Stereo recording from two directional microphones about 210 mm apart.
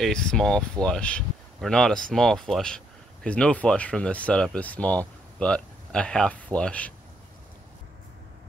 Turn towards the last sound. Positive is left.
turn(degrees=5)  # may be behind; listen again after turning